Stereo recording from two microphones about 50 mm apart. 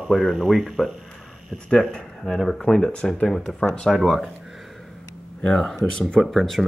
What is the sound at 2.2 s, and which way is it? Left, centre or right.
Speech, centre.